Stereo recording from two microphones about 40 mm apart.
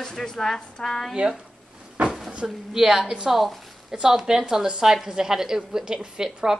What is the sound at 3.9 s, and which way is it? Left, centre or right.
A woman's voice, centre.